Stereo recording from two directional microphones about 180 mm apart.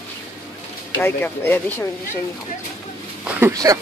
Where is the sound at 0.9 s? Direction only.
10° left (ahead or behind).